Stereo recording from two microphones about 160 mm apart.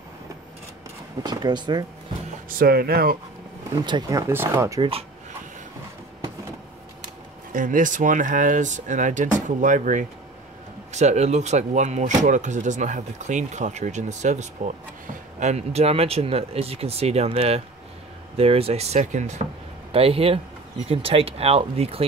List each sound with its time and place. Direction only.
1.2 s speech: 25° right (ahead or behind)
2.6 s speech: 70° right (ahead or behind)
3.8 s speech: 25° right (ahead or behind)
7.5 s speech: 55° right (ahead or behind)
19.9 s speech: 35° right (ahead or behind)